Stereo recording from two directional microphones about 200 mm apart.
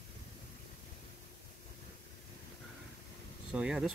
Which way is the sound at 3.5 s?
5° right (ahead or behind).